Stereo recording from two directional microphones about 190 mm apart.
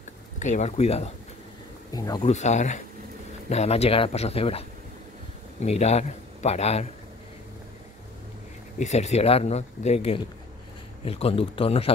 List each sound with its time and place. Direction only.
0.4 s speech: 40° left (ahead or behind)
1.9 s speech: 20° left (ahead or behind)
2.2 s speech: 40° left (ahead or behind)
8.7 s speech: 35° left (ahead or behind)